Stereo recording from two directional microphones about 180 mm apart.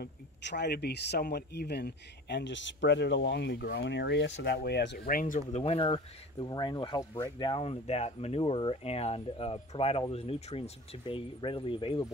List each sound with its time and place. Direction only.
0.0 s speech: 70° left (ahead or behind); by 5.6 s 50° left (ahead or behind)
5.6 s speech: 30° left (ahead or behind)